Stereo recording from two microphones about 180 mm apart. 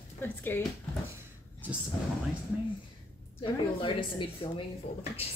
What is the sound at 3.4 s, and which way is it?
A woman's voice, 30° left (ahead or behind).